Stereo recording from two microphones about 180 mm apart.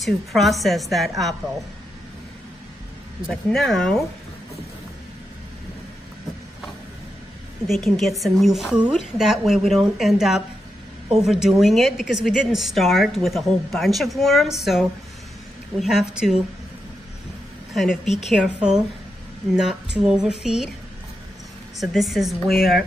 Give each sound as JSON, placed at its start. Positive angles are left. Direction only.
{"t": 0.0, "sound": "a woman's voice", "side_deg": 0}
{"t": 3.3, "sound": "a woman's voice", "side_deg": 0}
{"t": 7.6, "sound": "a woman's voice", "side_deg": 0}
{"t": 17.7, "sound": "a woman's voice", "side_deg": 0}
{"t": 21.7, "sound": "a woman's voice", "side_deg": 0}